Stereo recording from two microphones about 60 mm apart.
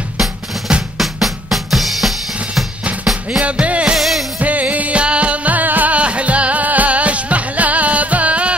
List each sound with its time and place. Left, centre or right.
0.2 s drum: centre
0.9 s drum: centre
3.3 s music: centre
3.9 s music: centre
4.4 s music: right